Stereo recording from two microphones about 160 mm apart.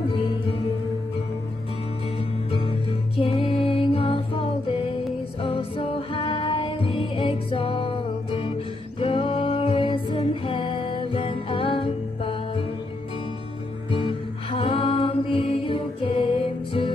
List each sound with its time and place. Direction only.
2.1 s music: 35° left (ahead or behind)
13.8 s music: 35° left (ahead or behind)